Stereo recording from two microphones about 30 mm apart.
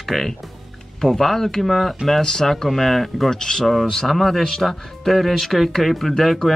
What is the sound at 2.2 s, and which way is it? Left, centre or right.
Speech, centre.